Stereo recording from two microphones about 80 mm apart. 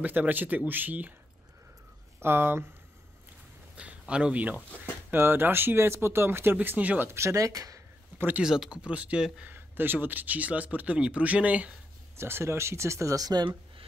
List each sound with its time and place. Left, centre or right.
0.0 s speech: right
2.1 s speech: right
3.7 s a sound: centre
4.1 s speech: centre
5.1 s speech: right
7.1 s speech: right
8.4 s speech: centre
9.5 s speech: right
12.2 s speech: right